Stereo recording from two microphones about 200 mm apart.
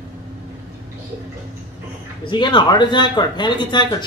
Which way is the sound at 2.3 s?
20° left (ahead or behind).